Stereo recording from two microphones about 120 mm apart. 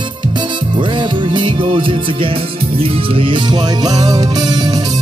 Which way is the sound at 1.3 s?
45° right (ahead or behind).